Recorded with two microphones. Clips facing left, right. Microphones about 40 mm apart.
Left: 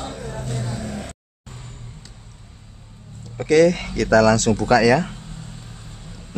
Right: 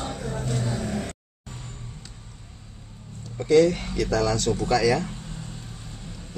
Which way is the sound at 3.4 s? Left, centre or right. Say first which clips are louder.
Left 3 dB; left.